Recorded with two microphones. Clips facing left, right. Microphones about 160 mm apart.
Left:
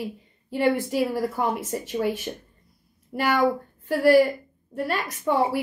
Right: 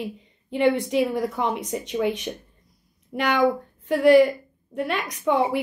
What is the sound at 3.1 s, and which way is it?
Speech, 5° left (ahead or behind).